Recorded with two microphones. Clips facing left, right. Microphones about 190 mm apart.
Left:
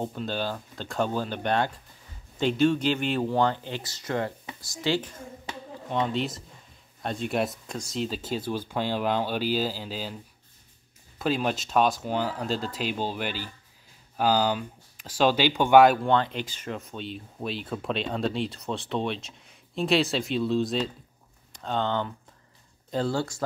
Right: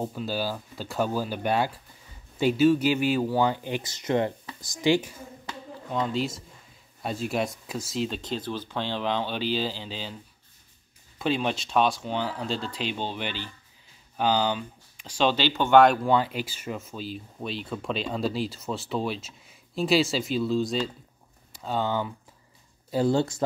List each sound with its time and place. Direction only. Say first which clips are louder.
0.0 s speech: right 1 dB; 5° right (ahead or behind)
5.9 s speech: even; centre (ahead or behind)
11.1 s speech: even; 5° left (ahead or behind)
12.4 s speech: left 1 dB; 45° left (ahead or behind)
12.8 s speech: left 2 dB; 5° left (ahead or behind); by 23.1 s 10° right (ahead or behind)
23.1 s speech: right 4 dB; 20° right (ahead or behind)